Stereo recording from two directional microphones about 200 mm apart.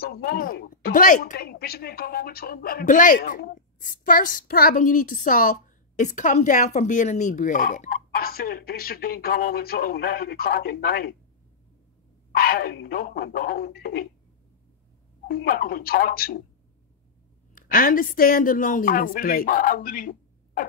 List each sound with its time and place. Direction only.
0.0 s speech: 50° left (ahead or behind)
12.3 s speech: 50° left (ahead or behind)
15.2 s speech: 50° left (ahead or behind)
17.6 s speech: 45° left (ahead or behind)